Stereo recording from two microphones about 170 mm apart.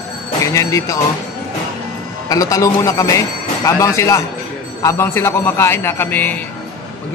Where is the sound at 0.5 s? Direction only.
20° left (ahead or behind).